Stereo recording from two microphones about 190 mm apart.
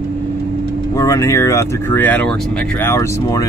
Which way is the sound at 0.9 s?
15° left (ahead or behind).